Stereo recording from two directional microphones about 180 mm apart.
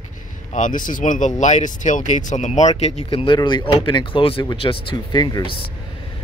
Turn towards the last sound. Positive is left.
turn(degrees=25)  # may be behind; listen again after turning